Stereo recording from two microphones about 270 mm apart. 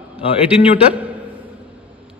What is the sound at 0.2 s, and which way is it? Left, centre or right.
Speech, left.